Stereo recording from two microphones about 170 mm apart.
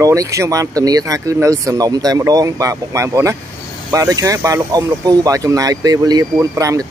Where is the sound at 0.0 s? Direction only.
20° right (ahead or behind).